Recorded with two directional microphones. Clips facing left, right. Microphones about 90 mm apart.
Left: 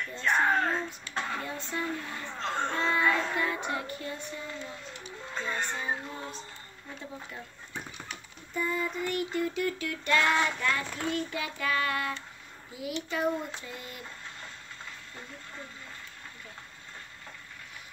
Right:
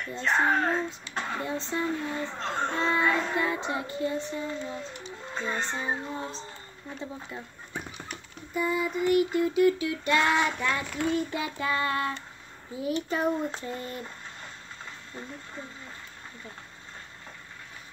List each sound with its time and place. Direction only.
0.1 s speech: 25° right (ahead or behind)
8.1 s a sound: 10° right (ahead or behind)
11.1 s speech: 25° right (ahead or behind)
12.7 s child singing: 35° right (ahead or behind)